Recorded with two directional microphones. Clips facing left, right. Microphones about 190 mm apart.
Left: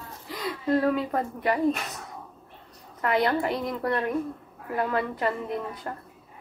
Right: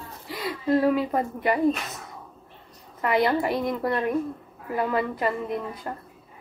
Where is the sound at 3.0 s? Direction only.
5° right (ahead or behind).